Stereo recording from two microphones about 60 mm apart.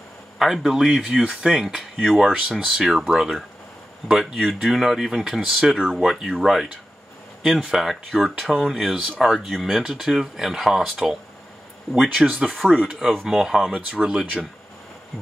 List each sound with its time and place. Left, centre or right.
0.4 s speech: centre
12.2 s speech: centre